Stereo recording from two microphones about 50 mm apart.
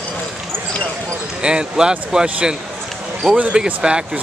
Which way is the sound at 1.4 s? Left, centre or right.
Centre.